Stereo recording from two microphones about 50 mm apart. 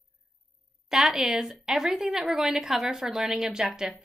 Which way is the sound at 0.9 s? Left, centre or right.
Centre.